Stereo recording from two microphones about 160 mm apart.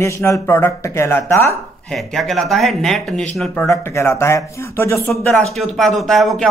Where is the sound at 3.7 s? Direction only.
15° left (ahead or behind).